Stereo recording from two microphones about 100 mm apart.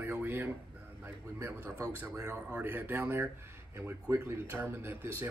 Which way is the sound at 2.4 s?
15° right (ahead or behind).